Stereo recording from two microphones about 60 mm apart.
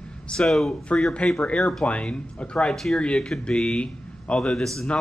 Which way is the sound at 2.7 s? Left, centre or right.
Centre.